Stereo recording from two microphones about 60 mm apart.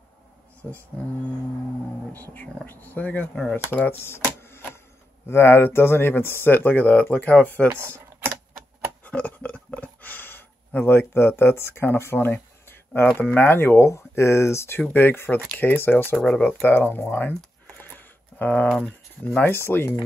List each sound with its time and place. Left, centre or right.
2.1 s speech: left
8.2 s typewriter: right
9.0 s a sound: left
13.8 s speech: left
15.0 s speech: left
16.3 s speech: left
16.6 s speech: left
17.9 s a sound: left
18.9 s speech: centre
19.4 s speech: left